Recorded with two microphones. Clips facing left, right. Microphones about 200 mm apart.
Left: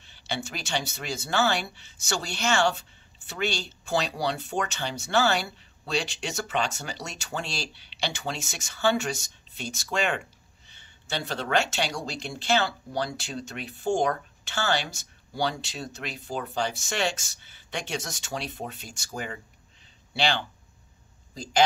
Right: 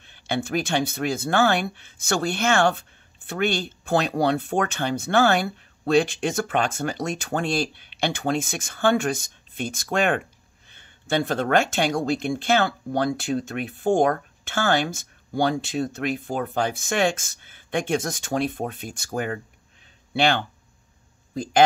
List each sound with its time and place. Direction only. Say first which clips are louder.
0.0 s speech: right 7 dB; 55° right (ahead or behind)